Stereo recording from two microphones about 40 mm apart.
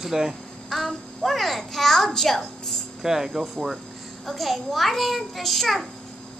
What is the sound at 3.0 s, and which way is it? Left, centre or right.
A child's voice, centre.